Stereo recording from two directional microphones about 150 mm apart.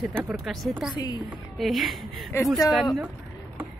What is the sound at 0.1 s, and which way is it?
Speech, 10° right (ahead or behind).